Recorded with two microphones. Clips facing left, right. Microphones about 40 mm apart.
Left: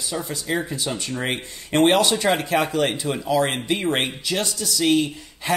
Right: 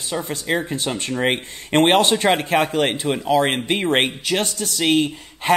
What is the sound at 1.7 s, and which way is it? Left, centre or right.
Speech, right.